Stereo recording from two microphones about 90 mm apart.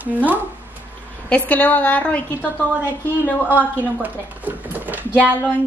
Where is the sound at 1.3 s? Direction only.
15° left (ahead or behind).